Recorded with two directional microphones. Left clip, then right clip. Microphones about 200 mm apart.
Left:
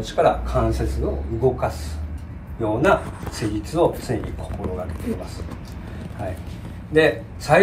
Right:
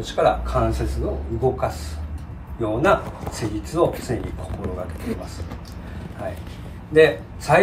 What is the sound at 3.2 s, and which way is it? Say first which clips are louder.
Speech: even; 50° right (ahead or behind).